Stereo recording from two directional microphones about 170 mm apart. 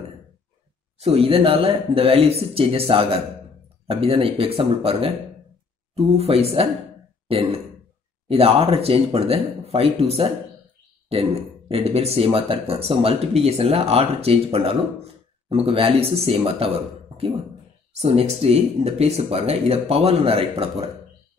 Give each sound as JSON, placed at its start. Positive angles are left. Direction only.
{"t": 0.9, "sound": "speech", "side_deg": -35}